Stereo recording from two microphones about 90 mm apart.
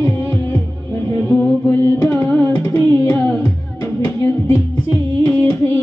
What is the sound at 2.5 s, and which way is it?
Music, 45° left (ahead or behind).